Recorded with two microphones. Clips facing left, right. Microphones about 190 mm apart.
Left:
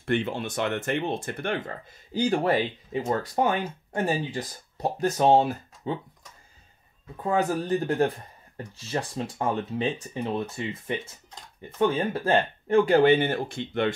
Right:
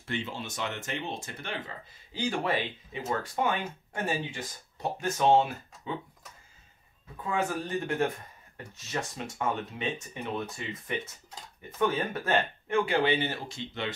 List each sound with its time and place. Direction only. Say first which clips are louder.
0.0 s speech: left 8 dB; 55° left (ahead or behind); by 5.9 s 35° left (ahead or behind)
7.2 s speech: left 6 dB; 40° left (ahead or behind)
11.8 s speech: left 5 dB; 30° left (ahead or behind); by 13.9 s 55° left (ahead or behind)